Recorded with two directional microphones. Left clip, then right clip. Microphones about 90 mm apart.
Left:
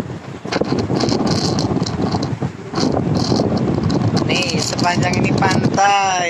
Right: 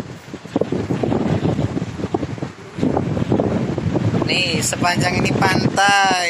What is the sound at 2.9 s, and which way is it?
Boat, 30° right (ahead or behind).